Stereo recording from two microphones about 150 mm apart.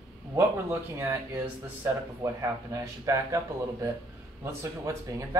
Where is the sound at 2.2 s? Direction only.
20° right (ahead or behind).